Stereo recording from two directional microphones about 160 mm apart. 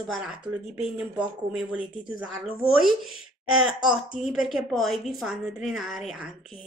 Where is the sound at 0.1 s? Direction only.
5° right (ahead or behind).